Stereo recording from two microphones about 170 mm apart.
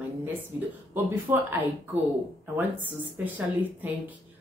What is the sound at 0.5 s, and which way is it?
Speech, 15° right (ahead or behind).